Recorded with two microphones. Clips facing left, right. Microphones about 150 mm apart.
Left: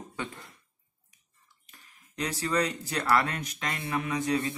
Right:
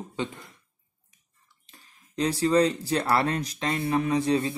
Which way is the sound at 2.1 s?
30° right (ahead or behind).